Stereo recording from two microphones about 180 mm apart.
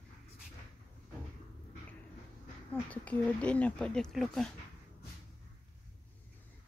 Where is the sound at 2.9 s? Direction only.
5° left (ahead or behind).